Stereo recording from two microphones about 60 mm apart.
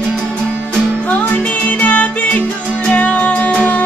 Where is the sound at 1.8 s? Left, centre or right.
Left.